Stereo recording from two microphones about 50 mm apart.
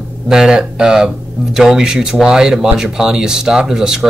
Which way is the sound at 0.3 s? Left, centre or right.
Centre.